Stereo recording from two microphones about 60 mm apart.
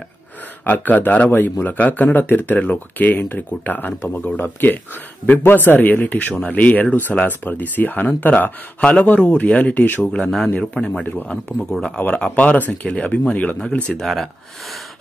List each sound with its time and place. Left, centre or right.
0.7 s speech: left
10.0 s speech: centre
12.2 s speech: left
13.9 s speech: centre